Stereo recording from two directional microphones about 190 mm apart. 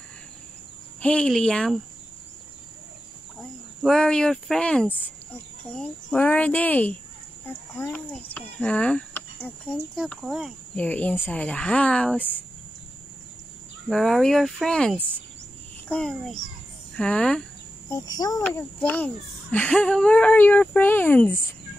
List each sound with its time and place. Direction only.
1.0 s speech: 5° left (ahead or behind)
3.8 s speech: 5° left (ahead or behind)
6.0 s speech: 5° left (ahead or behind)
13.8 s speech: centre (ahead or behind)
15.0 s speech: 10° right (ahead or behind)
15.9 s speech: 5° left (ahead or behind)
17.8 s insect: 20° left (ahead or behind)
18.5 s speech: 10° left (ahead or behind)